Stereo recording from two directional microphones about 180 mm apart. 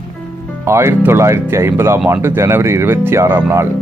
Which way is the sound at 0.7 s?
15° right (ahead or behind).